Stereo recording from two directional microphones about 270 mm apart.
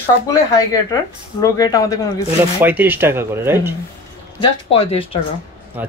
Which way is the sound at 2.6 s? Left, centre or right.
Centre.